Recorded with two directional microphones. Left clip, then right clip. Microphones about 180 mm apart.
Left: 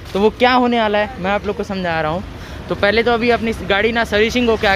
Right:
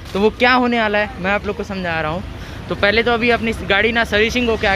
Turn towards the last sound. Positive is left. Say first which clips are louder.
# left 1 dB
turn(degrees=20)  # may be behind; listen again after turning